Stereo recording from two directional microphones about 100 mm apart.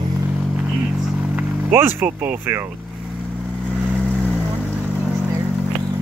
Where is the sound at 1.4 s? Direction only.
20° right (ahead or behind).